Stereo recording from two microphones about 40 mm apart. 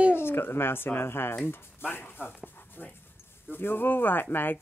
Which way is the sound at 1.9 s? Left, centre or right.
Left.